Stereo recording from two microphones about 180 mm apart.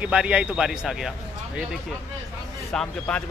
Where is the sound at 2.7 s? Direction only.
5° left (ahead or behind).